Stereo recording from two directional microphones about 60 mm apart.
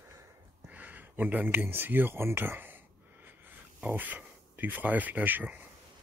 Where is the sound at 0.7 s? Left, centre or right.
Right.